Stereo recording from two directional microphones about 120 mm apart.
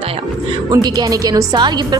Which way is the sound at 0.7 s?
30° right (ahead or behind).